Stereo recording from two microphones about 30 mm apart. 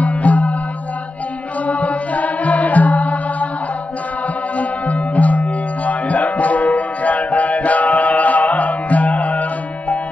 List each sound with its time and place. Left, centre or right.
0.0 s music: left
1.7 s music: left
4.6 s music: left